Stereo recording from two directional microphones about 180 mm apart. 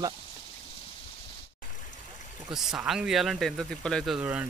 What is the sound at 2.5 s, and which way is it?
Speech, 5° right (ahead or behind).